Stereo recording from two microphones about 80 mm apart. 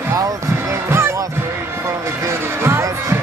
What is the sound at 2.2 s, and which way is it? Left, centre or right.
Music, right.